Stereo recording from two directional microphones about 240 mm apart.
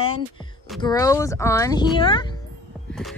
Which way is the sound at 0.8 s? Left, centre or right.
Centre.